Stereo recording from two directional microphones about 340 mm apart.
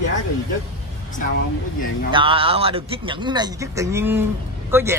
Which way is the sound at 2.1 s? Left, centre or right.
Centre.